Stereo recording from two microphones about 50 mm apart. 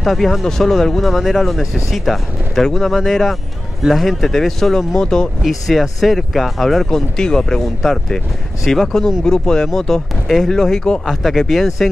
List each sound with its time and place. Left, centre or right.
0.0 s speech: centre
5.4 s speech: centre
9.2 s speech: centre